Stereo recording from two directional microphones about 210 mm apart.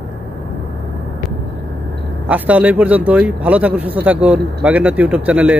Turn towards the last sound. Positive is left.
turn(degrees=-5)  # may be behind; listen again after turning